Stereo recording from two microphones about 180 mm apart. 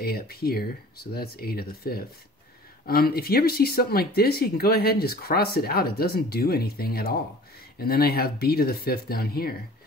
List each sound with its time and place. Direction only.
0.0 s speech: 60° left (ahead or behind)